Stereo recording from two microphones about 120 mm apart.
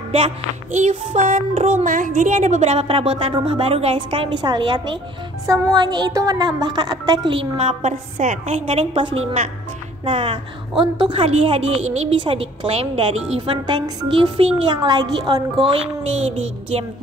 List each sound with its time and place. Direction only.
0.8 s child singing: 85° right
1.7 s a woman's voice: 90° right; by 7.3 s 35° right (ahead or behind)
7.3 s a woman's voice: 55° right (ahead or behind)
12.2 s a woman's voice: 50° right (ahead or behind)
15.7 s a woman's voice: 60° right (ahead or behind)